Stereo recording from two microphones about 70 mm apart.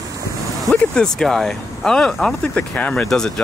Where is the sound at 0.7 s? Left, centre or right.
Centre.